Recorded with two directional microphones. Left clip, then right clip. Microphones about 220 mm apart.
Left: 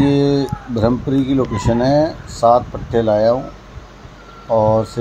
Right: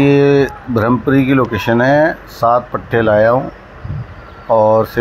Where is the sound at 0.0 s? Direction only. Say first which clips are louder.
Right 5 dB; 10° right (ahead or behind).